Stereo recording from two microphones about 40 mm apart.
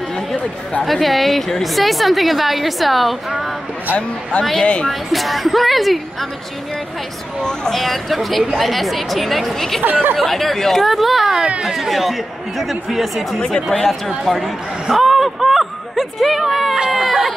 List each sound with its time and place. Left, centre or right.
0.8 s a woman's voice: centre
4.6 s a woman's voice: left
4.8 s a woman's voice: centre
7.7 s a woman's voice: centre
14.9 s a sound: centre
16.9 s a woman's voice: centre